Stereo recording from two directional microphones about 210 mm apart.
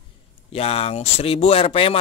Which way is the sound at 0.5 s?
30° left (ahead or behind).